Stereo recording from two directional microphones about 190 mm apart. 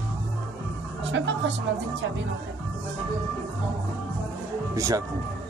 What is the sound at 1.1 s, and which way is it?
Speech, 70° right (ahead or behind).